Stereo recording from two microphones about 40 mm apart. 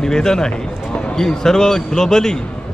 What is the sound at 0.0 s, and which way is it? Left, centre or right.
Speech, centre.